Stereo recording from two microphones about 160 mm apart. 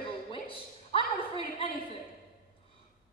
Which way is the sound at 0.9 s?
35° left (ahead or behind).